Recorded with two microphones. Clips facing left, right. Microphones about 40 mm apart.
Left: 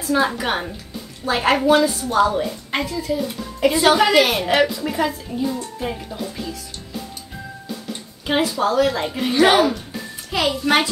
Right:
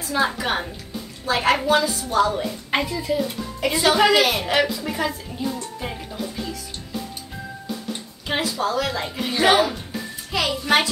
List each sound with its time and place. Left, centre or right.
0.1 s a woman's voice: centre
2.7 s a woman's voice: centre
3.9 s a woman's voice: centre
4.2 s a woman's voice: centre
8.3 s a woman's voice: centre